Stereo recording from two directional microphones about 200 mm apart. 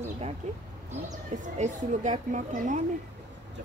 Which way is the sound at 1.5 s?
35° right (ahead or behind).